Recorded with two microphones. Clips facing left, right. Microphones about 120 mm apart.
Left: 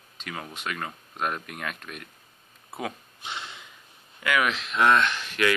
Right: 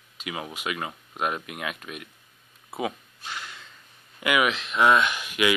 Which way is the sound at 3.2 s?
20° left (ahead or behind).